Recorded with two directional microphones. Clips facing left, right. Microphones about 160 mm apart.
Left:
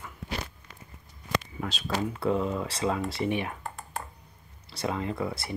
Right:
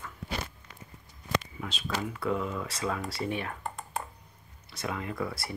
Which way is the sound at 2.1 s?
30° left (ahead or behind).